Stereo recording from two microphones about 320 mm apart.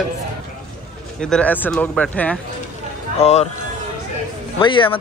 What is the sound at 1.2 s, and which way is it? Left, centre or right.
A man's voice, centre.